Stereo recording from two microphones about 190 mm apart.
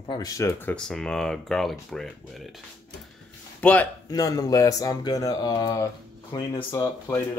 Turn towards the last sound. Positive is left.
turn(degrees=10)  # may be behind; listen again after turning